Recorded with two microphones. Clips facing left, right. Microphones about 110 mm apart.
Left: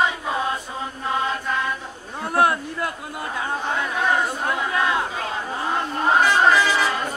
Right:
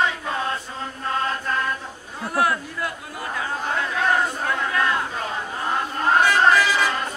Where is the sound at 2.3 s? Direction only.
25° left (ahead or behind).